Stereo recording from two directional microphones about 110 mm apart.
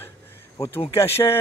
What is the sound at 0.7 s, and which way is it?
Speech, 25° left (ahead or behind).